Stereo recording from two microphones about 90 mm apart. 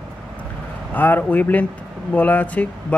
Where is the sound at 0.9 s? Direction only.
20° left (ahead or behind).